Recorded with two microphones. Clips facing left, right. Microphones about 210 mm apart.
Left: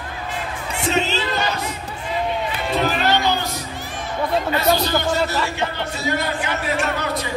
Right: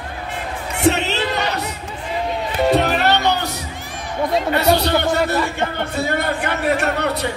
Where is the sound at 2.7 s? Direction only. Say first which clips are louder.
Right 1 dB; 70° right (ahead or behind).